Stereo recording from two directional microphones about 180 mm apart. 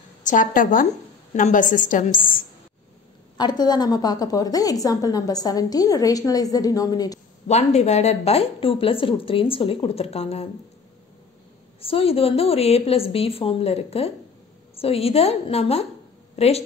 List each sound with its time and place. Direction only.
0.2 s a woman's voice: 45° left (ahead or behind)
3.3 s a woman's voice: 25° left (ahead or behind)
7.4 s a woman's voice: 40° left (ahead or behind)
11.8 s a woman's voice: 30° left (ahead or behind)